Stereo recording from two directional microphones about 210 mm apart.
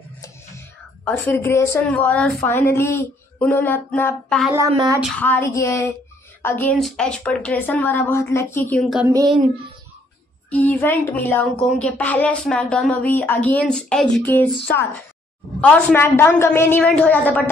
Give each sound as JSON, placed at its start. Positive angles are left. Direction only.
{"t": 0.2, "sound": "speech", "side_deg": 10}
{"t": 4.6, "sound": "speech", "side_deg": -20}
{"t": 5.0, "sound": "speech", "side_deg": 10}
{"t": 8.9, "sound": "a sound", "side_deg": -15}
{"t": 10.5, "sound": "speech", "side_deg": 10}